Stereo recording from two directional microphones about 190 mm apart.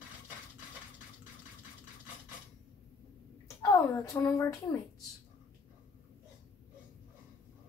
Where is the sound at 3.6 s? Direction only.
20° left (ahead or behind).